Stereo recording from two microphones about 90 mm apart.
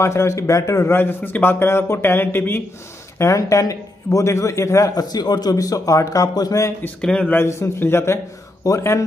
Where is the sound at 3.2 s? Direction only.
35° left (ahead or behind).